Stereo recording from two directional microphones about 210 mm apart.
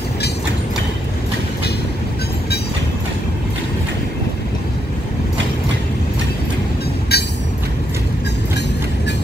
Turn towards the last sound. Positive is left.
turn(degrees=50)  # may be behind; listen again after turning